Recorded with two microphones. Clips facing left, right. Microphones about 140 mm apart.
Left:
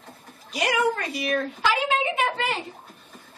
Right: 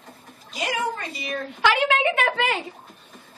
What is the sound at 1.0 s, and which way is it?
Speech, centre (ahead or behind).